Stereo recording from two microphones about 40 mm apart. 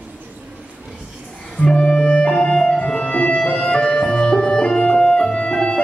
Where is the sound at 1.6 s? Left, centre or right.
Left.